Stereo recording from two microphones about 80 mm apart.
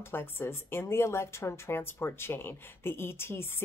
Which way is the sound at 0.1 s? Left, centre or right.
Left.